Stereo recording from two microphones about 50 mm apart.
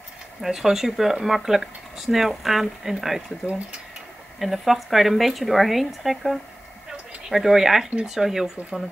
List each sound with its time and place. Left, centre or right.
0.4 s speech: centre
3.4 s speech: right
4.4 s speech: centre